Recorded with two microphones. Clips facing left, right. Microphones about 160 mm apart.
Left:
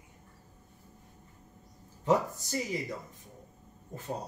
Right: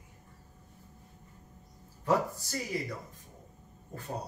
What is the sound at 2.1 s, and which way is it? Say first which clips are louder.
Speech: left 1 dB; 20° left (ahead or behind).